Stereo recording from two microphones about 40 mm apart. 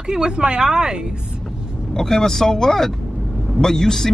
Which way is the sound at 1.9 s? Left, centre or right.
Centre.